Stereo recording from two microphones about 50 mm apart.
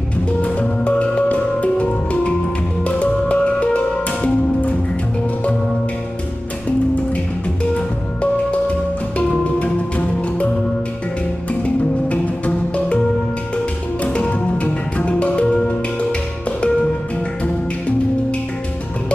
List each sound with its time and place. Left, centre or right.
0.4 s music: left
9.4 s music: left
11.6 s music: left
14.1 s music: left